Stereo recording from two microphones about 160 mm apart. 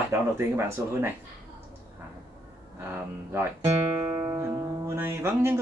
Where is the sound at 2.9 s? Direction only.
15° right (ahead or behind).